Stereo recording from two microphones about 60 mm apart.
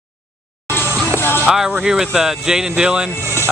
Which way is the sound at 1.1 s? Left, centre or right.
Left.